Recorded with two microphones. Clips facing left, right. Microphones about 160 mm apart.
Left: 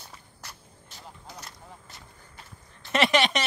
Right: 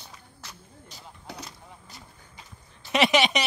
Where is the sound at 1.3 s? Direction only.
65° right (ahead or behind).